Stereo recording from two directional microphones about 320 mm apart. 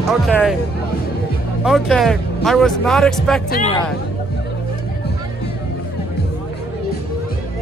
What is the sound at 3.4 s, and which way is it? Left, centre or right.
Speech, left.